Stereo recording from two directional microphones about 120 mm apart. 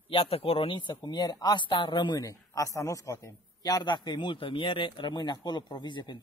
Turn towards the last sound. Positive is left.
turn(degrees=40)  # may be behind; listen again after turning